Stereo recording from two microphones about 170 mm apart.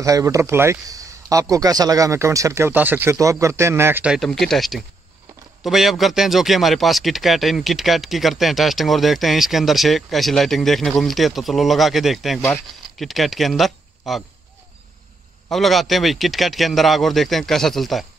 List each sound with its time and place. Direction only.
0.0 s a man's voice: 20° right (ahead or behind); by 14.2 s centre (ahead or behind)
15.5 s speech: centre (ahead or behind)